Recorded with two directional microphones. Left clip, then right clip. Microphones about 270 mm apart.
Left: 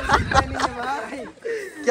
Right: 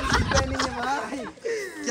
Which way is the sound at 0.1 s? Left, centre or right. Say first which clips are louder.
Left 6 dB; centre.